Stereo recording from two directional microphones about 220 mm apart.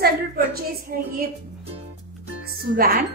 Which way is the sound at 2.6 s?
45° right (ahead or behind).